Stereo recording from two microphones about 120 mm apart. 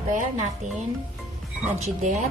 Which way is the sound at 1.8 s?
80° right.